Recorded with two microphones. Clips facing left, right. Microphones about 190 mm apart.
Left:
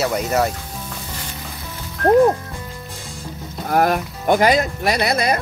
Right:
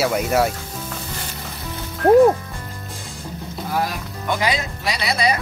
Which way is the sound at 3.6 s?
55° left (ahead or behind).